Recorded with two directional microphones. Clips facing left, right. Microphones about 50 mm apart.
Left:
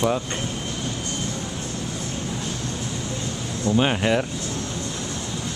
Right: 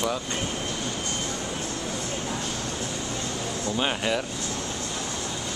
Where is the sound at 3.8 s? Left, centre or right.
Centre.